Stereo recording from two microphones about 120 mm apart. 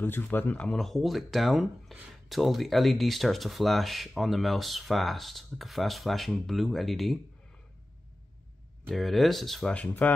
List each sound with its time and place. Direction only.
0.0 s speech: 15° left (ahead or behind); by 7.2 s centre (ahead or behind)
8.8 s speech: centre (ahead or behind)